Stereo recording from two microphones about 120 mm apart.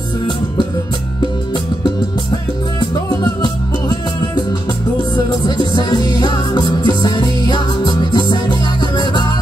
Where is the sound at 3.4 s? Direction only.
35° left (ahead or behind).